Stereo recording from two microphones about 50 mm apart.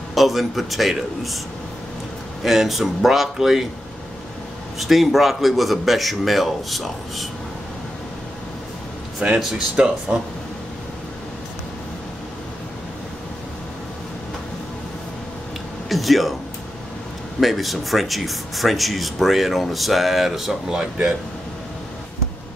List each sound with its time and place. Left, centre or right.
0.1 s speech: centre
2.4 s speech: centre
4.7 s speech: centre
9.2 s speech: centre
15.9 s a sound: centre
17.4 s speech: centre